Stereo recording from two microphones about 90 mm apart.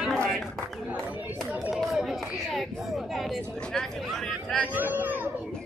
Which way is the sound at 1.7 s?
Centre (ahead or behind).